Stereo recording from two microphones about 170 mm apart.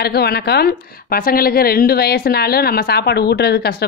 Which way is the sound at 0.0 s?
70° left (ahead or behind).